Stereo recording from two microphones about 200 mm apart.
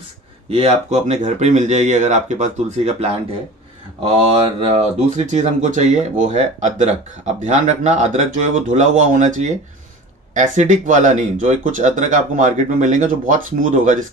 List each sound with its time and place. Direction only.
0.5 s speech: 30° right (ahead or behind)